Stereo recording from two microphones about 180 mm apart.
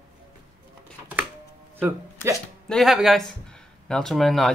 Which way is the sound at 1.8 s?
15° right (ahead or behind).